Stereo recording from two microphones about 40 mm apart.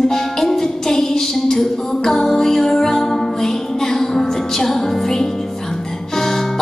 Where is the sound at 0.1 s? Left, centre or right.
Centre.